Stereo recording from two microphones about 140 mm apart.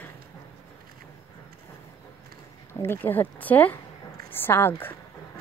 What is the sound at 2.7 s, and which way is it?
A woman's voice, 15° left (ahead or behind).